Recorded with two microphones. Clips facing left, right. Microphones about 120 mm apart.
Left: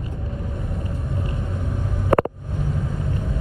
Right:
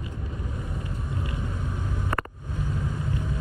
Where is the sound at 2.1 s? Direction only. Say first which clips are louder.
Left 14 dB; 65° left (ahead or behind).